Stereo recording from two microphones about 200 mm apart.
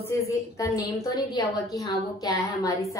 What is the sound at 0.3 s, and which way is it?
A woman's voice, 15° left (ahead or behind).